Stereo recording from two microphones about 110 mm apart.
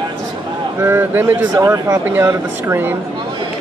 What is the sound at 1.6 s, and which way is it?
Speech, 35° right (ahead or behind).